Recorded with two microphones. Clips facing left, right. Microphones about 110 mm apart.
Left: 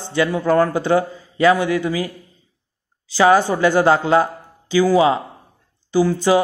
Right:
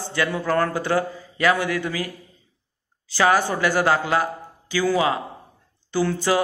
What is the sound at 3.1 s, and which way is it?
A man's voice, 20° left (ahead or behind).